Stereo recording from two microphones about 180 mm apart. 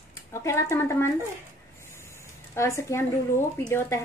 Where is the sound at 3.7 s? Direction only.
15° left (ahead or behind).